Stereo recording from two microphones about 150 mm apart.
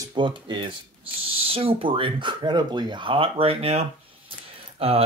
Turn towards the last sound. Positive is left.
turn(degrees=-40)  # may be behind; listen again after turning